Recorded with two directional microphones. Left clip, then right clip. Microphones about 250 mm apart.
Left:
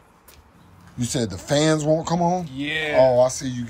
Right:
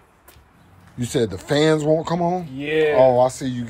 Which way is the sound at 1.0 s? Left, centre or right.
Centre.